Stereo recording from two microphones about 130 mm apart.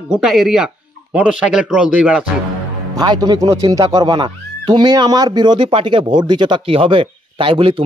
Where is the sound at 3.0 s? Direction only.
30° right (ahead or behind).